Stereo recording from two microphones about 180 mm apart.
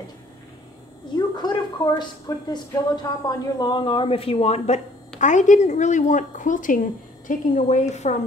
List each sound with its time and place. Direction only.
1.1 s a woman's voice: 25° left (ahead or behind); by 8.2 s 40° left (ahead or behind)